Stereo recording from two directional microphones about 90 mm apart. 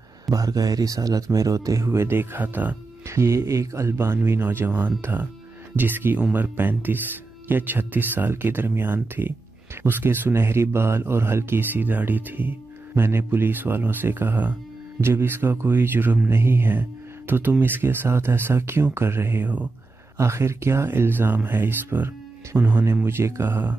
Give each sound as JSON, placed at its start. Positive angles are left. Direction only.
{"t": 0.3, "sound": "speech", "side_deg": -40}
{"t": 3.1, "sound": "speech", "side_deg": -30}
{"t": 20.2, "sound": "speech", "side_deg": -30}